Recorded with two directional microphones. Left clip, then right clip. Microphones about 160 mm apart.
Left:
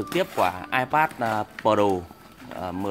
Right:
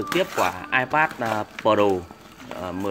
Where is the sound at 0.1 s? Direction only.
30° left (ahead or behind).